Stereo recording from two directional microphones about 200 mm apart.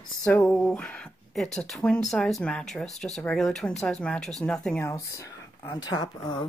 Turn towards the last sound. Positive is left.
turn(degrees=20)  # may be behind; listen again after turning